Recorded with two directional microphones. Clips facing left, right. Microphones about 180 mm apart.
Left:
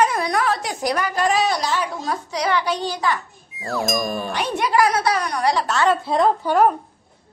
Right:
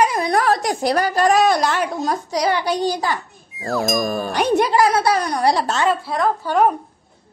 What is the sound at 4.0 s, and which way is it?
Speech, 40° right (ahead or behind).